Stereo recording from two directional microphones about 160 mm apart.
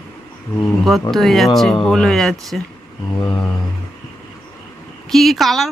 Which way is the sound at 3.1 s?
25° left (ahead or behind).